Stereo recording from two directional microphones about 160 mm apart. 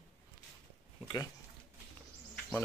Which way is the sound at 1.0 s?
25° left (ahead or behind).